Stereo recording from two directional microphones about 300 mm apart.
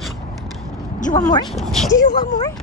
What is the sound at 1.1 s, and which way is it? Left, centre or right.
Speech, centre.